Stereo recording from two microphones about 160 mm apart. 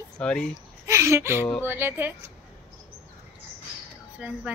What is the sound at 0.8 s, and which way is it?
Speech, 20° right (ahead or behind).